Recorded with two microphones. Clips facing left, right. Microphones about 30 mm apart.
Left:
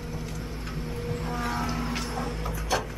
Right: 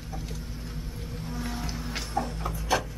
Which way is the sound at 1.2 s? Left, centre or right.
Left.